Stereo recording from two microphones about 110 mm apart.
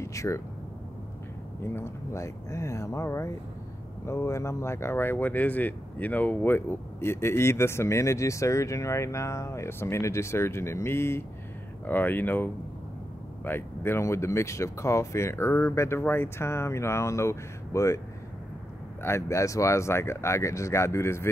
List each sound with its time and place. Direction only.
0.0 s a sound: 30° left (ahead or behind)
1.6 s speech: 25° left (ahead or behind)
19.0 s speech: 25° left (ahead or behind)